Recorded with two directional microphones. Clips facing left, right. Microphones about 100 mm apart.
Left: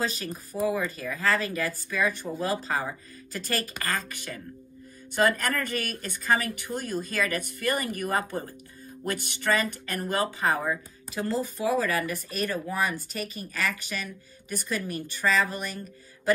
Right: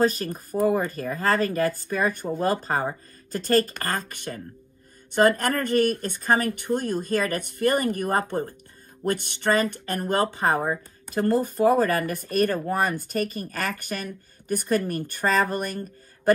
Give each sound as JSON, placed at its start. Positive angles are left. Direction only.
{"t": 0.0, "sound": "speech", "side_deg": -45}
{"t": 9.4, "sound": "speech", "side_deg": -40}